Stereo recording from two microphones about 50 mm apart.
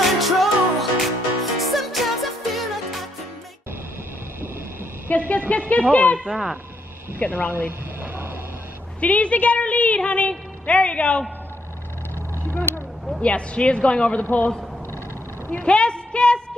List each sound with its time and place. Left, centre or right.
0.0 s music: centre
5.1 s vehicle: left
5.7 s a woman's voice: left
7.2 s speech: left
8.0 s a sound: right
9.0 s a woman's voice: left
12.5 s a sound: left
13.2 s a woman's voice: left
14.2 s speech: left
15.6 s a sound: centre